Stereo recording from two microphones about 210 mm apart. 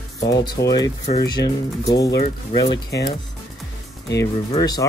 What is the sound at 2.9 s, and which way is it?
Speech, 50° left (ahead or behind).